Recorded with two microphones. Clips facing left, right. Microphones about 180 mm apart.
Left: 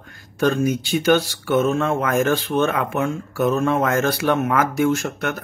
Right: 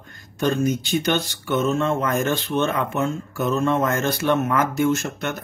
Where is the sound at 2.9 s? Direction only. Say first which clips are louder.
Left 1 dB; 10° left (ahead or behind).